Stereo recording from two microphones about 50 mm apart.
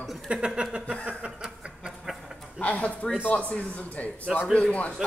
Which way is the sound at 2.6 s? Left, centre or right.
Left.